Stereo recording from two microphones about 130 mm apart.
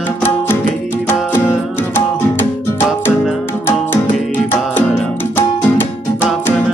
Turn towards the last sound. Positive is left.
turn(degrees=15)  # may be behind; listen again after turning